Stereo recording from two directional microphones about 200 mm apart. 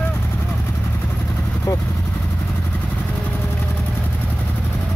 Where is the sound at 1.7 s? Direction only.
15° left (ahead or behind).